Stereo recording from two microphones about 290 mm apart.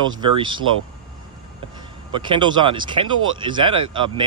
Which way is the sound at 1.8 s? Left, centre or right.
Centre.